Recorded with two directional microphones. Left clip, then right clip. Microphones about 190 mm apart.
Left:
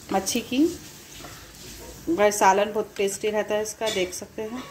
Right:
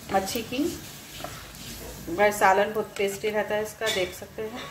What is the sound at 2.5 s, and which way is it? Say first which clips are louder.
Speech: left 1 dB; 40° left (ahead or behind).